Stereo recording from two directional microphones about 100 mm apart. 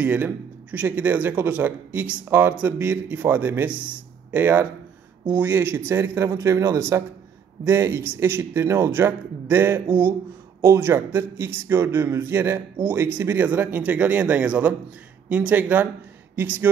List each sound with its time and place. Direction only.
0.0 s a man's voice: 15° right (ahead or behind)